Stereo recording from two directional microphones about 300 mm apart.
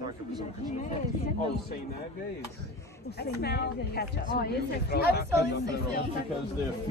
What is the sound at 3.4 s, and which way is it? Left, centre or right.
Speech, left.